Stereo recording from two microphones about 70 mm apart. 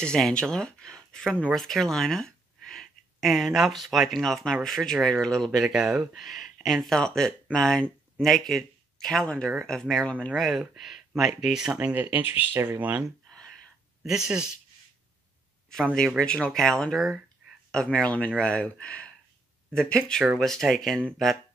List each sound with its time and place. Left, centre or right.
0.0 s speech: centre
10.3 s speech: centre
11.9 s speech: right
13.3 s a sound: centre
14.0 s speech: centre
15.7 s speech: centre